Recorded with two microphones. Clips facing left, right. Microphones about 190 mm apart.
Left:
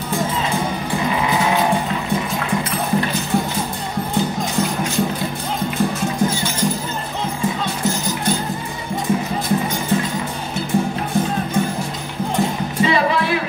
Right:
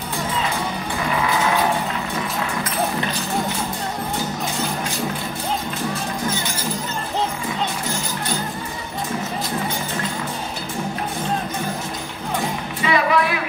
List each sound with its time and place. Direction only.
12.8 s music: 30° left (ahead or behind)